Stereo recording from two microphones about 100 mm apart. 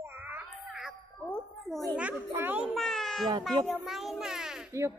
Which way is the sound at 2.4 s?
20° right (ahead or behind).